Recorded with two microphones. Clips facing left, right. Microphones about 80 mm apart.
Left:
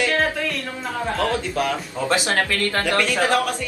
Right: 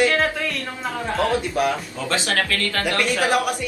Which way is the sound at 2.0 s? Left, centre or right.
Left.